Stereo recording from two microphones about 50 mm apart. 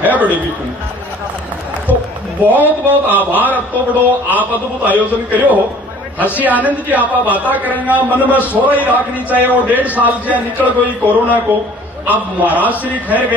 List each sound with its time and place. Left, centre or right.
0.0 s a man's voice: right
1.9 s a sound: left
2.4 s a man's voice: right